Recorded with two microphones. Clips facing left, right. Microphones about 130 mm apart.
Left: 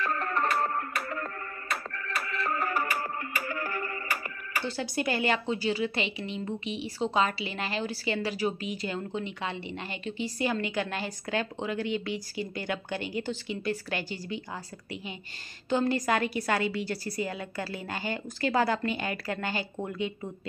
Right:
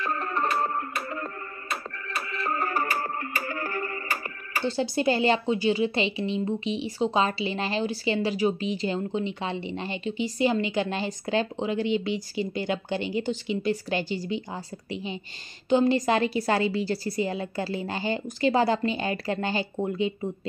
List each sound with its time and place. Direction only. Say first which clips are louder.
0.0 s music: right 1 dB; 20° right (ahead or behind)
5.4 s speech: right 5 dB; 20° right (ahead or behind)